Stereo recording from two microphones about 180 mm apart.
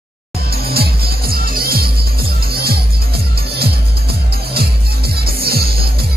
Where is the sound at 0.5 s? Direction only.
60° right (ahead or behind).